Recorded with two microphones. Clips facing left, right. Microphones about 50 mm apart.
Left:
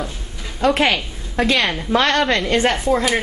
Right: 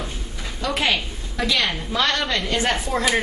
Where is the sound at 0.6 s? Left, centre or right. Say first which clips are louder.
Left 6 dB; left.